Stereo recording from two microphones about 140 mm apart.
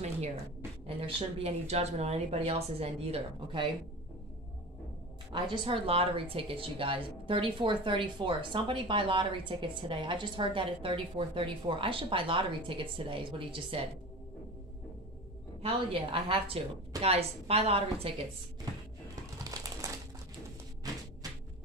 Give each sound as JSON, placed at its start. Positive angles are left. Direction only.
{"t": 0.8, "sound": "speech", "side_deg": -45}
{"t": 5.3, "sound": "a woman's voice", "side_deg": -40}
{"t": 15.6, "sound": "a woman's voice", "side_deg": -40}
{"t": 19.8, "sound": "typewriter", "side_deg": -25}